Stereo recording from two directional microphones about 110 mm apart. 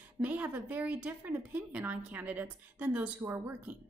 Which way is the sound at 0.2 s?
15° right (ahead or behind).